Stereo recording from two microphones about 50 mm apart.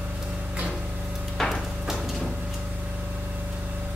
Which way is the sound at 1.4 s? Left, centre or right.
Centre.